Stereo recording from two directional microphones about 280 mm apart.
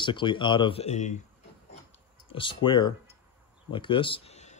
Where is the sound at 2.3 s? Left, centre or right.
Centre.